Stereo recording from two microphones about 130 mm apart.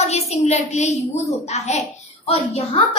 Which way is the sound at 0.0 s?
55° left (ahead or behind).